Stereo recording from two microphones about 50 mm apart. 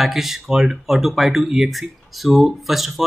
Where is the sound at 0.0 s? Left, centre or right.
Centre.